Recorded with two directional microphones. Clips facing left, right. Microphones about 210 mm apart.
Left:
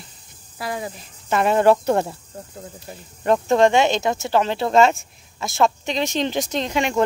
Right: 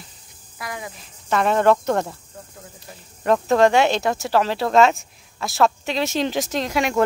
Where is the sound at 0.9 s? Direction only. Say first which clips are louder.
Even; 5° left (ahead or behind).